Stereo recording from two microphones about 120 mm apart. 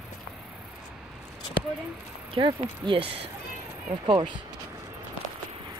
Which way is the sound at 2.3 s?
45° right (ahead or behind).